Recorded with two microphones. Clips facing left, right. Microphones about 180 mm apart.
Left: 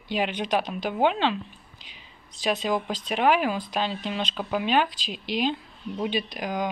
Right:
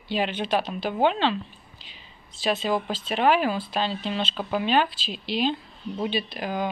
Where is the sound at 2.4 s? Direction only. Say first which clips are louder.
Right 1 dB; 15° left (ahead or behind).